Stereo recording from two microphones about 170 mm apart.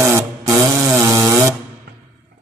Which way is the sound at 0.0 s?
15° right (ahead or behind).